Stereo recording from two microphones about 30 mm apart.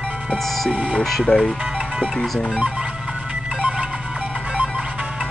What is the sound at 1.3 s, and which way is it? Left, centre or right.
Speech, left.